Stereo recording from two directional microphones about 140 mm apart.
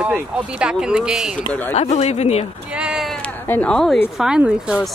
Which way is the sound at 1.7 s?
50° left (ahead or behind).